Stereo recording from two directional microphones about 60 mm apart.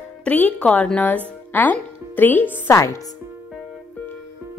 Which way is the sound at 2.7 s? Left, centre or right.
Left.